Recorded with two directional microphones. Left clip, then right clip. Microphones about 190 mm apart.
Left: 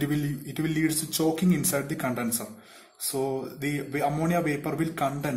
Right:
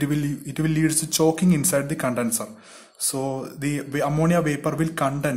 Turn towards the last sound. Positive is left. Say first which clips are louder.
# right 4 dB
turn(degrees=-30)  # may be behind; listen again after turning